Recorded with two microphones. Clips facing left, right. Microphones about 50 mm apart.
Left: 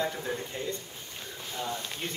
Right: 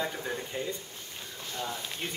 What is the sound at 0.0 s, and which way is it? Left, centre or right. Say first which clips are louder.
Speech: left 2 dB; centre.